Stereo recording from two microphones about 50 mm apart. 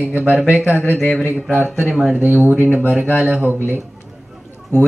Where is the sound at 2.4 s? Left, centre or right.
Centre.